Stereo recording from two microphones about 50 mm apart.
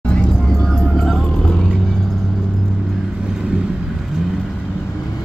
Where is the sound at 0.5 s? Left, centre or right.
Centre.